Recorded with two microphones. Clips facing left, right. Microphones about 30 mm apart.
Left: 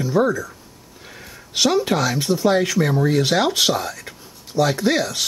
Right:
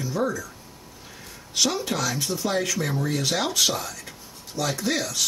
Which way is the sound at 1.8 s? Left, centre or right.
Left.